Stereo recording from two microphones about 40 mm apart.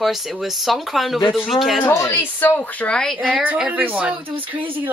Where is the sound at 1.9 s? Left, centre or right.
Left.